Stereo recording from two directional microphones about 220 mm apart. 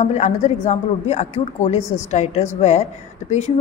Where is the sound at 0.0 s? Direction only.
30° left (ahead or behind).